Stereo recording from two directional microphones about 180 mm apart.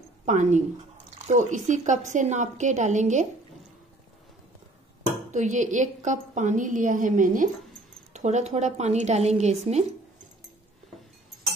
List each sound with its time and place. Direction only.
0.2 s a woman's voice: 40° right (ahead or behind)
5.3 s a woman's voice: 40° right (ahead or behind)